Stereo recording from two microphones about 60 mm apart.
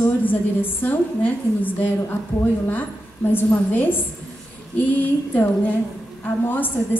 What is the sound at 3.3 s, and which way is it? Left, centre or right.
A woman's voice, left.